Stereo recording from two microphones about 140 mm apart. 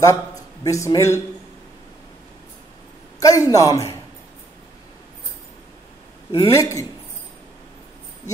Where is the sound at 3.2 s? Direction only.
25° left (ahead or behind).